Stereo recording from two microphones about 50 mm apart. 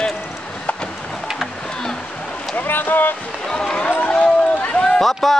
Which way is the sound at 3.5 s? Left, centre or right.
Centre.